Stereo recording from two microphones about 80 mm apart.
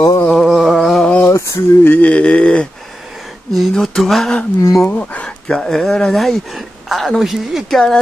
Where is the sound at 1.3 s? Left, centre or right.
Left.